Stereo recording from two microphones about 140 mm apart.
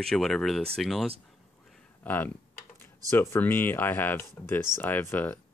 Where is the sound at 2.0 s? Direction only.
10° left (ahead or behind).